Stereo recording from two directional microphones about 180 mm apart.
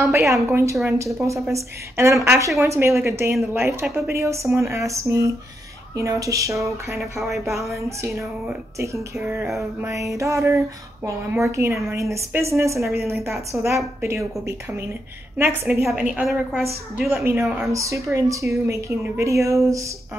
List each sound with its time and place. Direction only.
0.3 s a woman's voice: 15° right (ahead or behind)
8.0 s a woman's voice: 15° right (ahead or behind)
15.3 s a woman's voice: 15° right (ahead or behind)